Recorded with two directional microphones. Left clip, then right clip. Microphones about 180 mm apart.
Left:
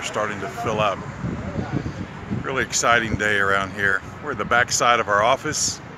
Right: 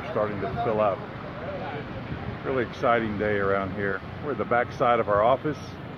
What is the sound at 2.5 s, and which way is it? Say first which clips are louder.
Speech: left 5 dB; 15° left (ahead or behind).